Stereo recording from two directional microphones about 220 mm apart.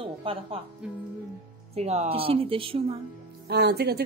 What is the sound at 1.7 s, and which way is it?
A woman's voice, 30° right (ahead or behind).